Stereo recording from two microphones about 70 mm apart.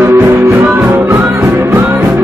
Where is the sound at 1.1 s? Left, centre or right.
Right.